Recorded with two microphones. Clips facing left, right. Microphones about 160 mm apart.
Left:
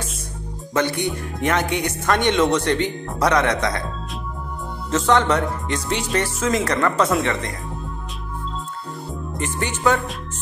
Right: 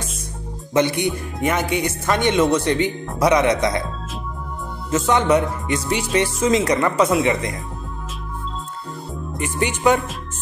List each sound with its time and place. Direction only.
0.7 s speech: 15° right (ahead or behind)
4.9 s speech: 10° right (ahead or behind)
6.4 s speech: 20° right (ahead or behind)
9.4 s speech: 15° right (ahead or behind)